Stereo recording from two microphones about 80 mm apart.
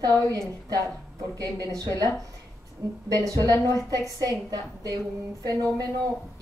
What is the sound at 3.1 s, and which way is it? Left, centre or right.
A woman's voice, right.